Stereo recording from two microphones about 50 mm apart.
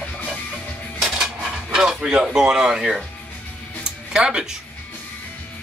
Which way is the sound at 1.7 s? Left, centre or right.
Centre.